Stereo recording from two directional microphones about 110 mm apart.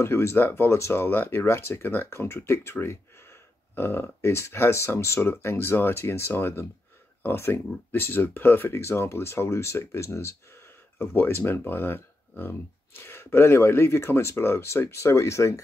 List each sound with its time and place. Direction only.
0.0 s speech: 25° left (ahead or behind)